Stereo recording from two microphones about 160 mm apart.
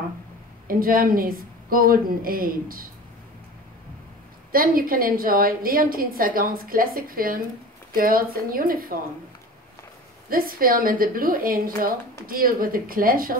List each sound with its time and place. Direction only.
0.7 s a woman's voice: 65° right (ahead or behind)
4.5 s a woman's voice: 65° right (ahead or behind)
10.3 s a woman's voice: 65° right (ahead or behind)